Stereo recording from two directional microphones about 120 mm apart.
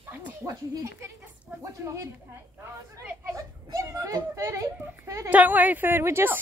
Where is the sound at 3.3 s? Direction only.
30° right (ahead or behind).